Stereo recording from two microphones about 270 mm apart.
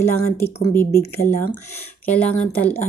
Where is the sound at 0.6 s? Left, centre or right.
Centre.